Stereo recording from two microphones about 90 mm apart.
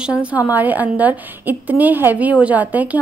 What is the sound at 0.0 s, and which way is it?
A woman's voice, 15° right (ahead or behind).